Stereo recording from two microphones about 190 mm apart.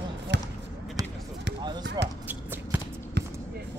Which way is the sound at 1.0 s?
15° right (ahead or behind).